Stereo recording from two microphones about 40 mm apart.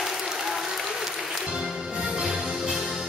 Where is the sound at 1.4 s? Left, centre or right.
Centre.